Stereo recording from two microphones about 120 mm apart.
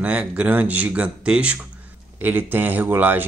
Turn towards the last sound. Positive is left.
turn(degrees=-15)  # may be behind; listen again after turning